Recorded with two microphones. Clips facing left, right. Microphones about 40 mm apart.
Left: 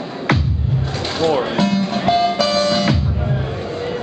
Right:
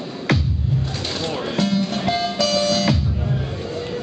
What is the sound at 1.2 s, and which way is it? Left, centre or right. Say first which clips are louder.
Music: left 7 dB; centre.